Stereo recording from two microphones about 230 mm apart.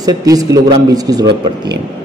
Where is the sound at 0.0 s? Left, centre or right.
Centre.